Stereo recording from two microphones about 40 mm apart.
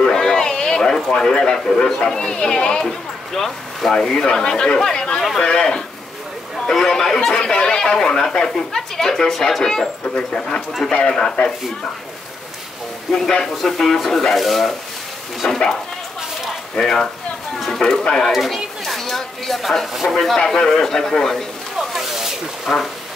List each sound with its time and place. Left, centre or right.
0.0 s a man's voice: centre
6.7 s speech: centre
13.1 s speech: centre
15.4 s speech: centre
16.7 s speech: centre
18.1 s children playing: centre
20.3 s speech: centre
21.7 s a sound: centre
22.7 s speech: centre